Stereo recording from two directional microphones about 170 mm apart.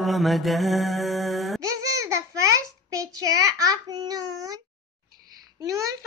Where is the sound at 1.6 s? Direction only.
20° right (ahead or behind).